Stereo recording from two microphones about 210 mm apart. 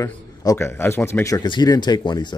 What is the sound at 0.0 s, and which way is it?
Speech, 15° left (ahead or behind).